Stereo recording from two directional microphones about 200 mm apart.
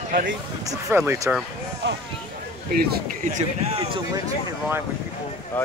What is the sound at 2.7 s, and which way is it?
Speech, 50° right (ahead or behind).